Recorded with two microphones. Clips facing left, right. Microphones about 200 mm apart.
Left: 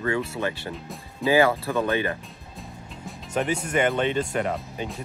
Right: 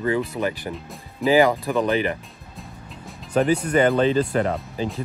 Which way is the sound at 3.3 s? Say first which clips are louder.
Right 6 dB; 35° right (ahead or behind).